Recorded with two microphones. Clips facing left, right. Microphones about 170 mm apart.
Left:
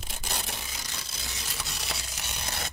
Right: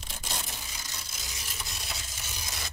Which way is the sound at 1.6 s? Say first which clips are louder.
Left 3 dB; 75° left (ahead or behind).